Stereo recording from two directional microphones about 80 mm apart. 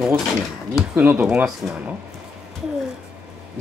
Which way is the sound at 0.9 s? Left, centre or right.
Right.